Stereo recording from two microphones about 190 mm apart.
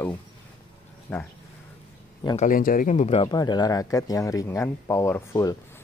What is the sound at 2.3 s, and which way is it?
Speech, 45° left (ahead or behind).